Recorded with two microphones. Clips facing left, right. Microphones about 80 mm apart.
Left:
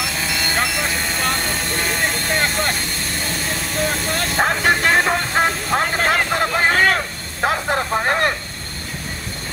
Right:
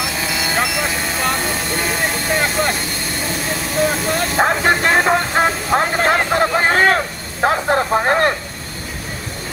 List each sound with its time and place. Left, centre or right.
0.0 s vehicle: centre
5.0 s train: centre
6.1 s vehicle: right
7.4 s speech: right